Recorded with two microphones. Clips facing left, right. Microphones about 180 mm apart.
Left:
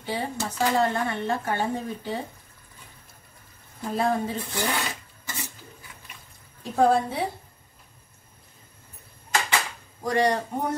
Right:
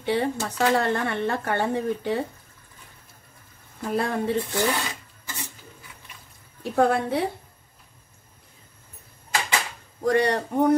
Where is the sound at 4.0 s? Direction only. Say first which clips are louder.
Even; 70° right (ahead or behind).